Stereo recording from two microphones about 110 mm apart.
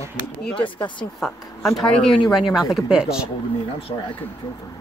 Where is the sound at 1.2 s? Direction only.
Centre (ahead or behind).